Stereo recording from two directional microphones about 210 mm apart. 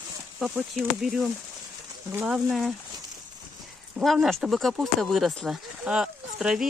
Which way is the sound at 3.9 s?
Centre (ahead or behind).